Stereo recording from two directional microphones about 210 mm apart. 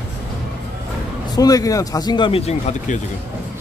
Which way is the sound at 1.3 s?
15° left (ahead or behind).